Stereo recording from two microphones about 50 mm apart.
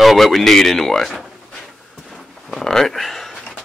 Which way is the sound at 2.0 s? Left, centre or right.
Centre.